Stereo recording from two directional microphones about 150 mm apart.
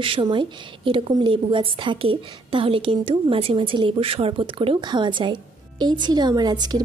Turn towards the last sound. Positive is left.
turn(degrees=-25)  # may be behind; listen again after turning